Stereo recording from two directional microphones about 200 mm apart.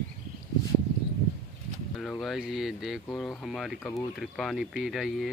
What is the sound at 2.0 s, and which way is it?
Speech, centre (ahead or behind).